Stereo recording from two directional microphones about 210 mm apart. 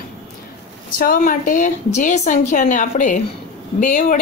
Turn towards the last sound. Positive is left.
turn(degrees=40)  # may be behind; listen again after turning